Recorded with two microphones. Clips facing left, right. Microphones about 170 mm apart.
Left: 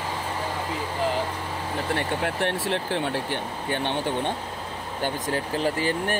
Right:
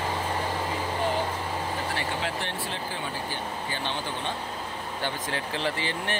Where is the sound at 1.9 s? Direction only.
60° left (ahead or behind).